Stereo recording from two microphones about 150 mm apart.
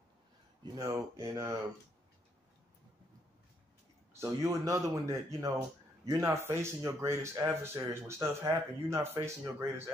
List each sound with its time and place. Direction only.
0.7 s speech: 25° right (ahead or behind)
4.2 s speech: 20° right (ahead or behind)